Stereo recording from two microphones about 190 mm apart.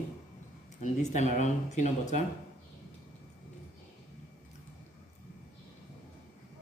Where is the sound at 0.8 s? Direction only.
40° left (ahead or behind).